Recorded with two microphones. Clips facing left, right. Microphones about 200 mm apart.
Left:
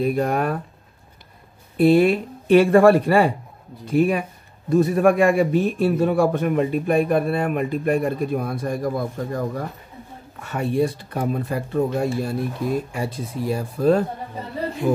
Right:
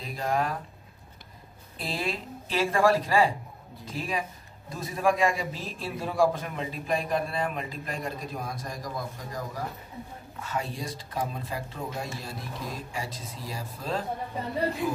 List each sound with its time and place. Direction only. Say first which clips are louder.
0.0 s a man's voice: left 9 dB; 60° left (ahead or behind)
1.8 s a man's voice: left 17 dB; 60° left (ahead or behind)